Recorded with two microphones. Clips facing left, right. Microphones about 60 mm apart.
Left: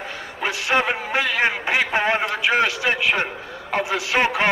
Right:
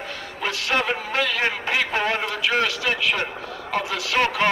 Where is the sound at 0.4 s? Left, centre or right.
Centre.